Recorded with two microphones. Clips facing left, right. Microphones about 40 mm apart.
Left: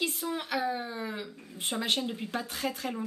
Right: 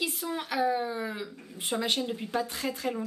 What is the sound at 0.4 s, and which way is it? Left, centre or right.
A woman's voice, centre.